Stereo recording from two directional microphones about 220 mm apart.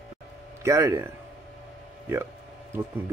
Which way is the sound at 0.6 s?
15° right (ahead or behind).